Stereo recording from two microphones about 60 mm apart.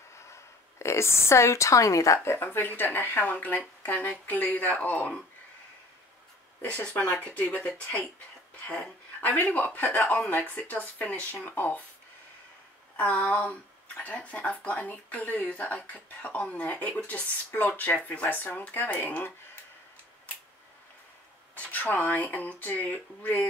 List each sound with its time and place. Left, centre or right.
0.1 s speech: left
2.2 s speech: left
6.7 s speech: centre
12.9 s speech: left
17.5 s speech: left
21.5 s speech: left